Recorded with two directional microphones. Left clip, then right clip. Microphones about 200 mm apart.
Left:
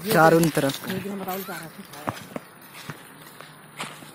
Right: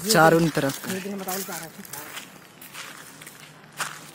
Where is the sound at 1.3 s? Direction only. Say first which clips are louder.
Even; 30° left (ahead or behind).